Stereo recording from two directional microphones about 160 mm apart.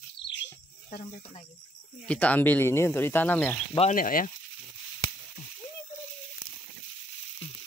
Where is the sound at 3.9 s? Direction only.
60° left (ahead or behind).